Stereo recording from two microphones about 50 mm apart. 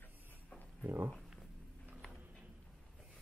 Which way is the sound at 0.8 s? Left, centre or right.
Right.